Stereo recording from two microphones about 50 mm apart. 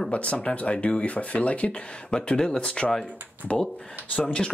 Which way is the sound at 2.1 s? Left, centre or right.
Centre.